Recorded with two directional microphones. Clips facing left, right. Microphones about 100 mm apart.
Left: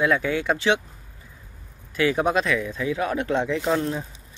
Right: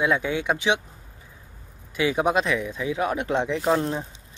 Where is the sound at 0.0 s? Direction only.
20° right (ahead or behind).